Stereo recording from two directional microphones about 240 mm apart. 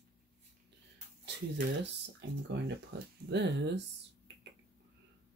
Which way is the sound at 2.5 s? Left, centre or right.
Right.